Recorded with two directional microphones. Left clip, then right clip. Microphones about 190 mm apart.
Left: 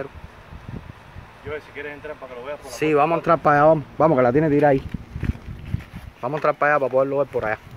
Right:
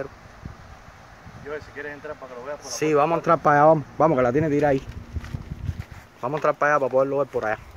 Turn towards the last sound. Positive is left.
turn(degrees=0)  # may be behind; listen again after turning